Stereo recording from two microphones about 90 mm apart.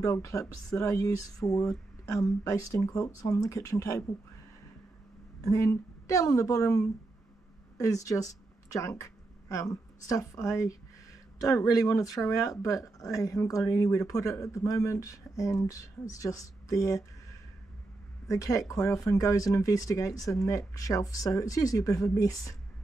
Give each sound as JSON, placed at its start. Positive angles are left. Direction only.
{"t": 0.0, "sound": "speech", "side_deg": 35}
{"t": 5.4, "sound": "a man's voice", "side_deg": 35}
{"t": 18.3, "sound": "speech", "side_deg": 35}